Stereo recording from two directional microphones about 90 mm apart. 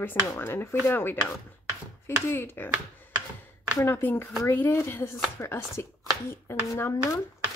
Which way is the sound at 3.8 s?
25° left (ahead or behind).